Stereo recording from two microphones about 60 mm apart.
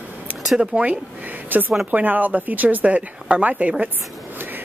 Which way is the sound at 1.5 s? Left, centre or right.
Right.